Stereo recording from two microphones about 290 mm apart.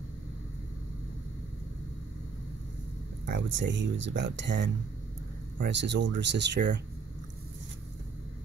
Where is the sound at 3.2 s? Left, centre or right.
Right.